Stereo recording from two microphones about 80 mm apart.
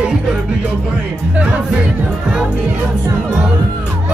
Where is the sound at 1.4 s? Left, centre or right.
Centre.